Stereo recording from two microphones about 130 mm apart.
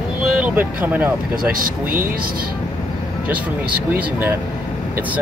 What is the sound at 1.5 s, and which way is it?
Speech, 90° right.